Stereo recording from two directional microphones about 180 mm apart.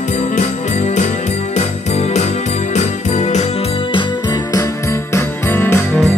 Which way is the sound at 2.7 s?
40° left (ahead or behind).